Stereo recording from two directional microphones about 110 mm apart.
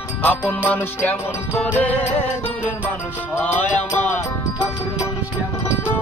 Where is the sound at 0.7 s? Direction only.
20° left (ahead or behind).